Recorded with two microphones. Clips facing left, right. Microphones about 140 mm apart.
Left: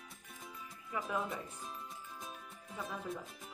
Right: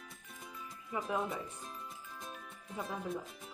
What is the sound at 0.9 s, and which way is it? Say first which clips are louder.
Speech: right 2 dB; 20° right (ahead or behind).